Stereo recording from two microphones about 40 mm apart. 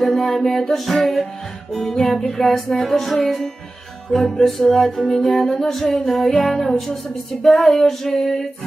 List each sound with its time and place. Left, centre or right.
0.0 s music: centre
7.4 s music: centre